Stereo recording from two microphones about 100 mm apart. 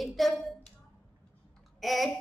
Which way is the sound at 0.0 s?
Centre (ahead or behind).